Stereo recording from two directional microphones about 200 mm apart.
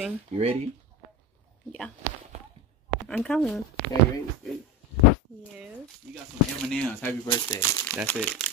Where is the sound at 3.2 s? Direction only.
5° left (ahead or behind).